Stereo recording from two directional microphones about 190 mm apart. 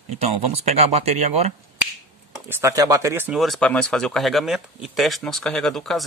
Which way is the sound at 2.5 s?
15° right (ahead or behind).